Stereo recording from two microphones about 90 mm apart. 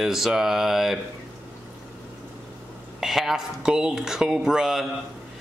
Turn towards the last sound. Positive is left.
turn(degrees=-5)  # may be behind; listen again after turning